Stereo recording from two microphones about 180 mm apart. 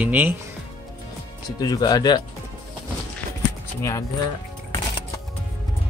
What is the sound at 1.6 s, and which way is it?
Speech, 20° left (ahead or behind).